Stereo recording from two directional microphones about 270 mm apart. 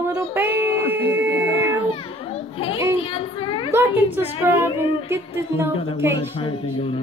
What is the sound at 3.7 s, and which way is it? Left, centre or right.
Speech, centre.